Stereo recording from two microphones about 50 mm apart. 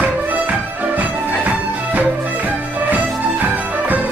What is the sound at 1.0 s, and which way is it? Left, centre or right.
Music, right.